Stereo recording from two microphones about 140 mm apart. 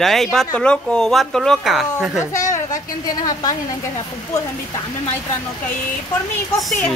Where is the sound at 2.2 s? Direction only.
20° left (ahead or behind).